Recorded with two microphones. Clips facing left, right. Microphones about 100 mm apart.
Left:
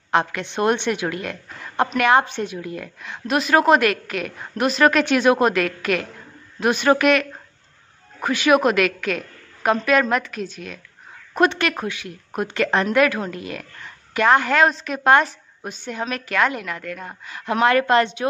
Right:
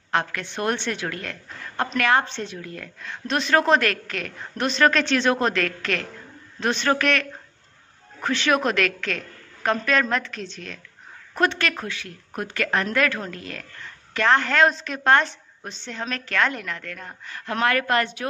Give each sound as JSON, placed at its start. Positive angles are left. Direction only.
{"t": 0.1, "sound": "a woman's voice", "side_deg": 20}